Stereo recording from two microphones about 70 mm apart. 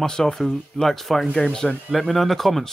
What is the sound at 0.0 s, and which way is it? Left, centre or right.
Speech, centre.